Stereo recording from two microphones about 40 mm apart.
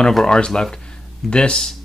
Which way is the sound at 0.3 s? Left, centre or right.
Centre.